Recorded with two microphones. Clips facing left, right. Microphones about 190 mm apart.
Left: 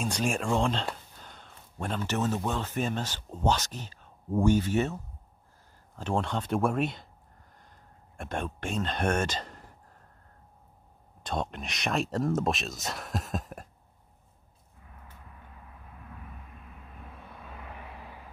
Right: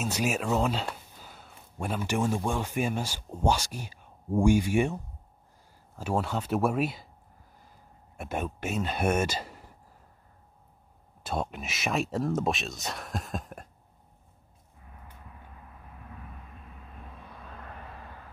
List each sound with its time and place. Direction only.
0.0 s speech: 5° right (ahead or behind)
11.2 s speech: 5° right (ahead or behind)
17.4 s vehicle: 5° left (ahead or behind)